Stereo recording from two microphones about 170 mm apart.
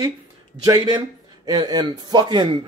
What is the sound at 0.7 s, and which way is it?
A man's voice, 25° right (ahead or behind).